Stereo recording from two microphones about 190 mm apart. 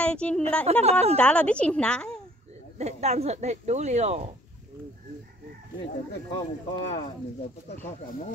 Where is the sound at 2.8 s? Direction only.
35° right (ahead or behind).